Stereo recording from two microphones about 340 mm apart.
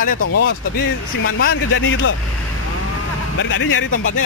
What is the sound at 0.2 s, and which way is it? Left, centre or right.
Speech, left.